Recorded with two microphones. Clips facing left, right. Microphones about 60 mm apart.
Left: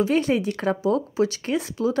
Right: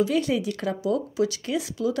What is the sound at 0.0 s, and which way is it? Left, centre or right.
Speech, left.